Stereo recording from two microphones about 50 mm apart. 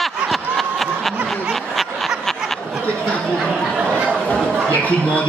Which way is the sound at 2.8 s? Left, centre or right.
Left.